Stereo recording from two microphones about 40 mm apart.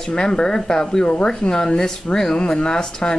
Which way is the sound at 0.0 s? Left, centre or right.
Centre.